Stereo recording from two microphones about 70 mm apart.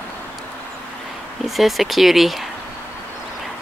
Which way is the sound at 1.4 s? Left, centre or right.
Centre.